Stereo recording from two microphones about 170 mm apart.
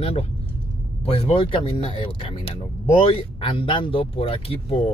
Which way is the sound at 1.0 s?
35° left (ahead or behind).